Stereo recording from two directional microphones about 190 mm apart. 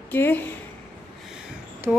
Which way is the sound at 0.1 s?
10° left (ahead or behind).